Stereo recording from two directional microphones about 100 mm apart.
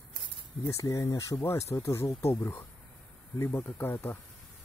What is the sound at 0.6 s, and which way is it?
Speech, 35° left (ahead or behind).